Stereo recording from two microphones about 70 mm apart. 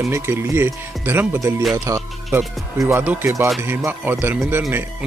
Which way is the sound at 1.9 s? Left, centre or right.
Right.